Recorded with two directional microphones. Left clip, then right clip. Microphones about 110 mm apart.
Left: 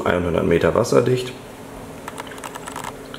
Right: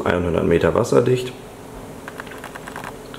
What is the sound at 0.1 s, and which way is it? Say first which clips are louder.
Speech: right 1 dB; 10° right (ahead or behind).